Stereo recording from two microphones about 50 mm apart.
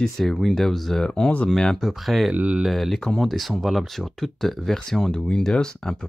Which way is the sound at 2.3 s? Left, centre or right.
Right.